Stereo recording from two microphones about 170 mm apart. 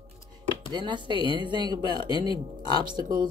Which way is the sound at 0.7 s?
30° right (ahead or behind).